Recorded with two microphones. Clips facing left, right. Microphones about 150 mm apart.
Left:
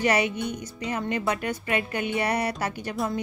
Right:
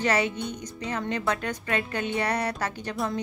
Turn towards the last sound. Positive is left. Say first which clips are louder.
# left 1 dB
turn(degrees=0)  # may be behind; listen again after turning